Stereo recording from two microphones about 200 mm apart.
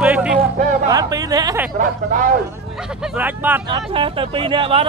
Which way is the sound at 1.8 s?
45° right (ahead or behind).